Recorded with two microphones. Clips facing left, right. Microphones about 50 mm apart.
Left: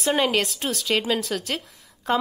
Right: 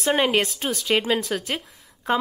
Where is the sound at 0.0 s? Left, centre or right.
Centre.